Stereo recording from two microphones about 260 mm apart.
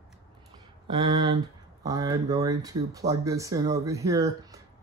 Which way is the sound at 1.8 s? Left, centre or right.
Centre.